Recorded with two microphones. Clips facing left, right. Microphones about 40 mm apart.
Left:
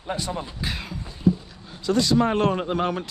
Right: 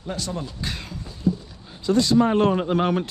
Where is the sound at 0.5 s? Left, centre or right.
Centre.